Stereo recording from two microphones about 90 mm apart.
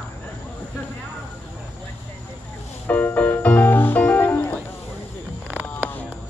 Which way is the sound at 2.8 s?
20° left (ahead or behind).